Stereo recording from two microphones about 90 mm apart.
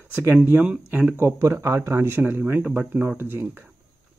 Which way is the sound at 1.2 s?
30° right (ahead or behind).